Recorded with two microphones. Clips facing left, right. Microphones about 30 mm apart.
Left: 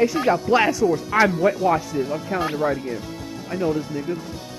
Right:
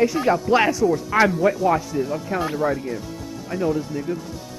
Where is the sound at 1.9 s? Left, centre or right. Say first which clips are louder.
Even; left.